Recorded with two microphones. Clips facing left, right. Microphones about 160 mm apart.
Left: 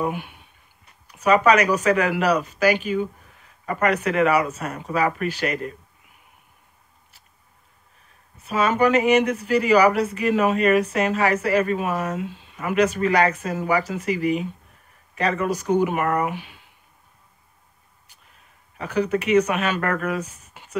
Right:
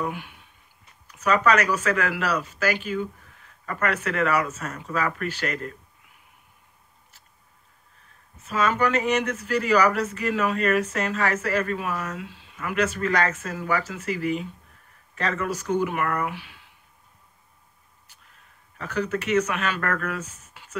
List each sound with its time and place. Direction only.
1.0 s speech: 10° left (ahead or behind)
8.4 s speech: 10° left (ahead or behind)
18.8 s speech: 15° left (ahead or behind)